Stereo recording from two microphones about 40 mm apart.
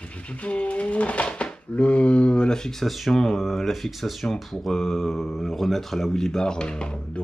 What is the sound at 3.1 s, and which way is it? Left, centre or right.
Speech, centre.